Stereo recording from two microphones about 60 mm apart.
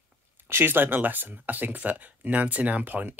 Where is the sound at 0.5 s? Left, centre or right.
Right.